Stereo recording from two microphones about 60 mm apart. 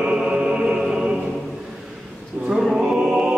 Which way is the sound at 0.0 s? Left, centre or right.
Centre.